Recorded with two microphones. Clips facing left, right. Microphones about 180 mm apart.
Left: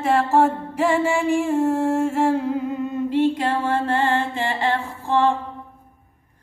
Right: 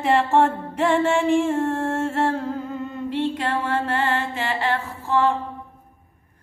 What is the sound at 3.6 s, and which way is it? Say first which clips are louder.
Mantra: left 3 dB; 15° left (ahead or behind).